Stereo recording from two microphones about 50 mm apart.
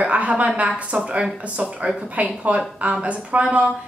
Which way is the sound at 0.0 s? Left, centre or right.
Right.